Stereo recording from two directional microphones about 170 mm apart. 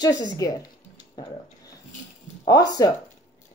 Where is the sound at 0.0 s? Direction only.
20° left (ahead or behind).